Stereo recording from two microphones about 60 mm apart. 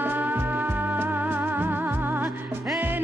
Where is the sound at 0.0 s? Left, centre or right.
Right.